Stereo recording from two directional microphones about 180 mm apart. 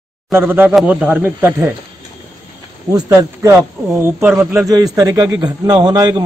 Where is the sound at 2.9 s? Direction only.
20° right (ahead or behind).